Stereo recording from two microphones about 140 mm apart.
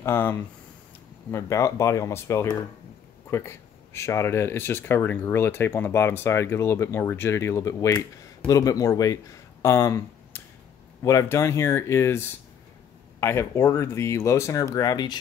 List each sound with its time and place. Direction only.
0.0 s speech: 15° left (ahead or behind)
13.2 s speech: 20° left (ahead or behind)